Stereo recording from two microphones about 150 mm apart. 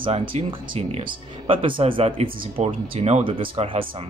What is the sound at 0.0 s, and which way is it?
Speech, 35° right (ahead or behind).